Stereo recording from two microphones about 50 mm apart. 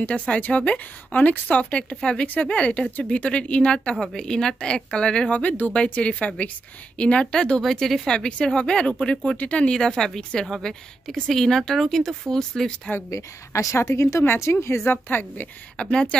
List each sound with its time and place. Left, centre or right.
0.0 s speech: left
3.9 s a woman's voice: centre
7.6 s speech: centre
8.1 s speech: centre
9.7 s a woman's voice: centre
13.1 s a woman's voice: left
15.8 s a woman's voice: centre